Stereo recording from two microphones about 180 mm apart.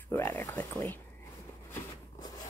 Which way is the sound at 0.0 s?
10° left (ahead or behind).